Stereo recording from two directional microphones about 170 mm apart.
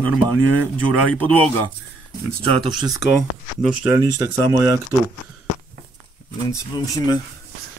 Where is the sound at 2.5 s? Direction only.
30° right (ahead or behind).